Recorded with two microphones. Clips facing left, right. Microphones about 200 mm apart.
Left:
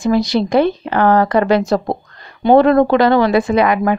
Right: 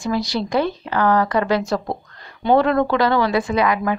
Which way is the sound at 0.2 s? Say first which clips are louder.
Left 7 dB; 20° left (ahead or behind).